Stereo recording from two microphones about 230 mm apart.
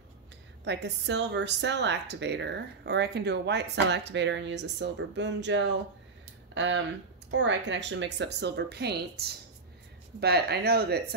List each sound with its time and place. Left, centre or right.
0.7 s a woman's voice: right